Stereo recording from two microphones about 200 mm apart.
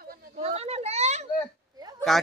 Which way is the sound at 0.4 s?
30° right (ahead or behind).